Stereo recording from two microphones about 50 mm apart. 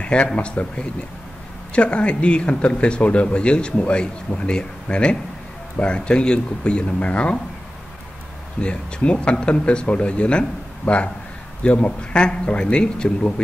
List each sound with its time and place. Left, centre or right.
0.0 s speech: left
0.6 s speech: left
1.7 s speech: left
8.5 s speech: left
11.6 s speech: left